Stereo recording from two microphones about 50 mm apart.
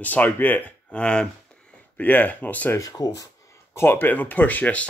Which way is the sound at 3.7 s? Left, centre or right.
Left.